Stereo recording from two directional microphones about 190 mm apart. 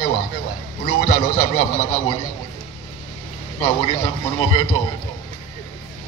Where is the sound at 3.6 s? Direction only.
25° left (ahead or behind).